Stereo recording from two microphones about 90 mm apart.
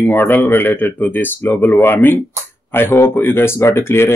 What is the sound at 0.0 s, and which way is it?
Speech, 20° left (ahead or behind).